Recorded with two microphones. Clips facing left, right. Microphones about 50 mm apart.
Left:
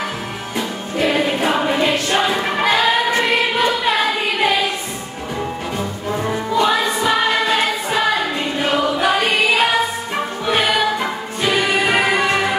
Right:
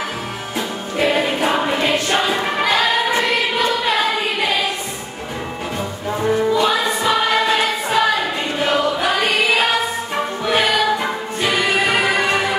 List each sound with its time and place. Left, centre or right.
1.0 s music: centre
2.1 s choir: centre
6.3 s music: centre
8.5 s choir: centre
10.4 s music: centre